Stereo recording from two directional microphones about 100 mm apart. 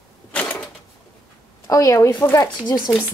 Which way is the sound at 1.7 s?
35° left (ahead or behind).